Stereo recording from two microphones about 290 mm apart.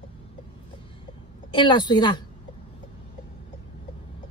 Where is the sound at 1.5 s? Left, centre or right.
Centre.